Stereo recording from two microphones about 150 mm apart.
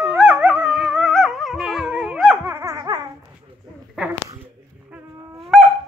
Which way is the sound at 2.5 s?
20° right (ahead or behind).